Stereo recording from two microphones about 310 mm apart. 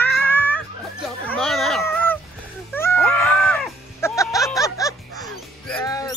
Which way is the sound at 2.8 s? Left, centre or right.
Centre.